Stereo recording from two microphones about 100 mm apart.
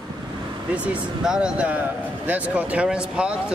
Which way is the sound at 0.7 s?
10° right (ahead or behind).